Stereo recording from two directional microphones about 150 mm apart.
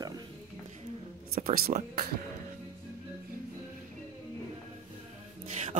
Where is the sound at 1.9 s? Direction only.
90° right.